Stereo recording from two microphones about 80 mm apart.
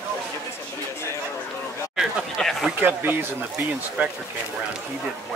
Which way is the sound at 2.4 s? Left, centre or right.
Centre.